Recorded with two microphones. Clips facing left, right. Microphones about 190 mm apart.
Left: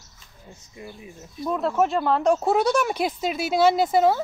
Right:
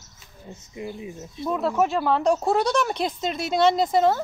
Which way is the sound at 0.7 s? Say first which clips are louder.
Right 7 dB; 20° right (ahead or behind).